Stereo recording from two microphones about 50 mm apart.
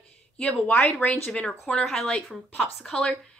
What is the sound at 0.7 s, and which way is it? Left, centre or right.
Speech, left.